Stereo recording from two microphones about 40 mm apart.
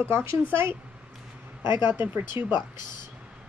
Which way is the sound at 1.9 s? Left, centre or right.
Right.